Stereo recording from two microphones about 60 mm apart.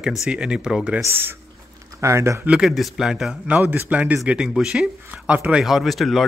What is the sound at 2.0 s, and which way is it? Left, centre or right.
Speech, right.